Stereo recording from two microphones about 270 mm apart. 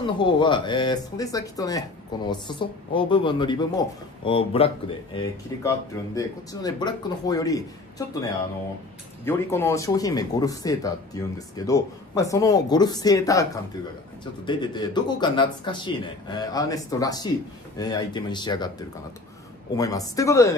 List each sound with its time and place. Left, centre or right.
0.0 s speech: centre
9.2 s speech: centre